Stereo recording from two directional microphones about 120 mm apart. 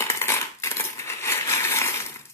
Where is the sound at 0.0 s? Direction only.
20° left (ahead or behind).